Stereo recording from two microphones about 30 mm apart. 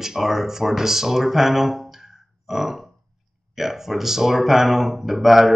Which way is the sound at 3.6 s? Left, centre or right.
Centre.